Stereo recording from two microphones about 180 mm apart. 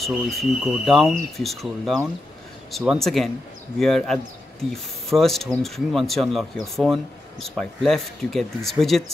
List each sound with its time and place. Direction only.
0.0 s speech: centre (ahead or behind)